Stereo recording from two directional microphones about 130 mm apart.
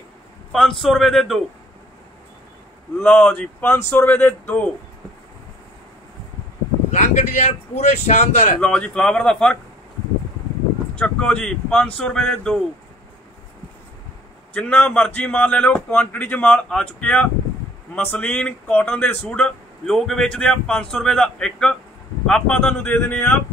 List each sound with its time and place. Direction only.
0.5 s a man's voice: centre (ahead or behind)
3.0 s a man's voice: 10° left (ahead or behind)
6.9 s speech: 65° left (ahead or behind)
8.5 s a man's voice: 5° left (ahead or behind)
11.0 s a man's voice: 10° left (ahead or behind)
14.5 s a man's voice: 10° left (ahead or behind)